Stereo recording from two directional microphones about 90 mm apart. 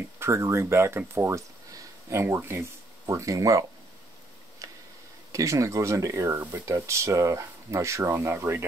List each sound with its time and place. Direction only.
0.2 s speech: 30° right (ahead or behind)
4.6 s tick-tock: 40° right (ahead or behind)
5.3 s speech: 35° right (ahead or behind)
8.1 s speech: 25° right (ahead or behind)